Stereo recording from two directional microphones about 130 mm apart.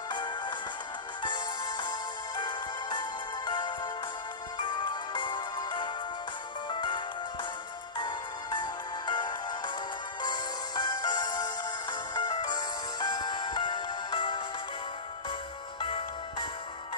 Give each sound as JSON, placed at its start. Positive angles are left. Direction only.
{"t": 0.1, "sound": "music", "side_deg": 35}
{"t": 8.0, "sound": "music", "side_deg": 35}
{"t": 15.8, "sound": "music", "side_deg": 40}